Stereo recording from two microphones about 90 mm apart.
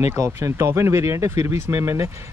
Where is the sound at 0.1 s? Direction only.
30° right (ahead or behind).